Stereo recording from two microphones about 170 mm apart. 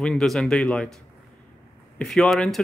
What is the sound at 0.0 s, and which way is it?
Speech, 5° left (ahead or behind).